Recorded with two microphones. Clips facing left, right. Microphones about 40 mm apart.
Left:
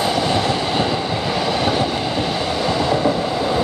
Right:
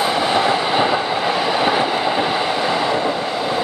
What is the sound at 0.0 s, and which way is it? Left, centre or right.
Train, centre.